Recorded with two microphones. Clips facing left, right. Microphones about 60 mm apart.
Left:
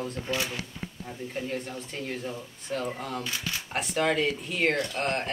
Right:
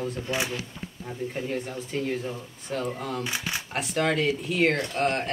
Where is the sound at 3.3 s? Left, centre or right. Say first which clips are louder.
Right 3 dB; right.